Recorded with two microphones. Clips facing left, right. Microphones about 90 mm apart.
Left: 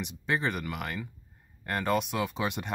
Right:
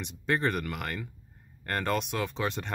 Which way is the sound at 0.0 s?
5° left (ahead or behind).